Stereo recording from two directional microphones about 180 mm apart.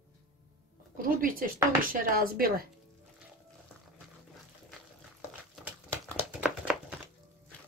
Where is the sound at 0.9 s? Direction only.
50° right (ahead or behind).